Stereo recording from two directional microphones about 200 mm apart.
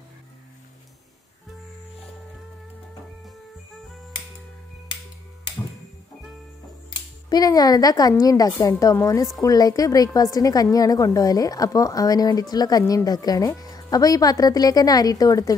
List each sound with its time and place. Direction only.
7.2 s a woman's voice: 20° left (ahead or behind)